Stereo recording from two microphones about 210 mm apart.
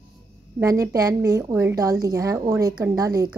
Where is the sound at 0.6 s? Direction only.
15° right (ahead or behind).